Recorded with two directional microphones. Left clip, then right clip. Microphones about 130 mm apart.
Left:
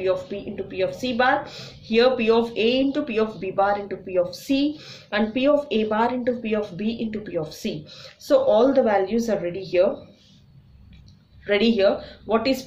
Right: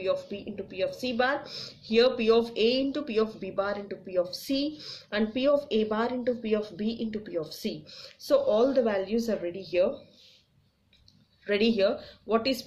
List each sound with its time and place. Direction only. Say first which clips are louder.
0.0 s speech: left 6 dB; 30° right (ahead or behind)
11.4 s speech: left 6 dB; 30° right (ahead or behind)